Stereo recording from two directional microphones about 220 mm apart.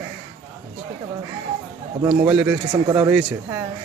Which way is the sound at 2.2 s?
5° right (ahead or behind).